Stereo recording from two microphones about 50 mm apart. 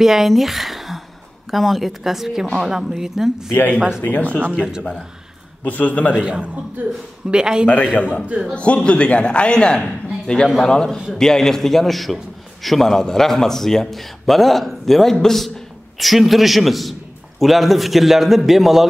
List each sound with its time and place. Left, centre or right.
0.0 s a sound: centre
1.5 s a man's voice: centre
4.0 s a man's voice: left
4.6 s speech: centre
5.6 s a man's voice: left
6.1 s speech: centre
6.8 s speech: right
7.2 s speech: centre
7.6 s a man's voice: left; by 18.9 s centre